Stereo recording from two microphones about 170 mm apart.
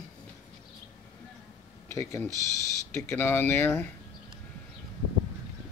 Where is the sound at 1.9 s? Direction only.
15° left (ahead or behind).